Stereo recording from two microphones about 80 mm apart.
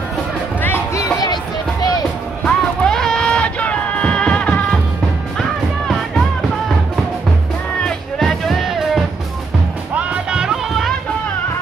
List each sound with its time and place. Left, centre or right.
0.9 s a sound: left
1.3 s music: left
2.4 s music: centre
7.8 s music: centre